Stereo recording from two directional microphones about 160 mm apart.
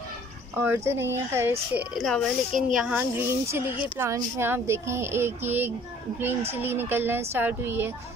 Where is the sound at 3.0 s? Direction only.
15° right (ahead or behind).